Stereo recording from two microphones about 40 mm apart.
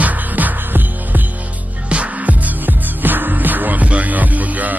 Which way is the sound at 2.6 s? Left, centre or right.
Right.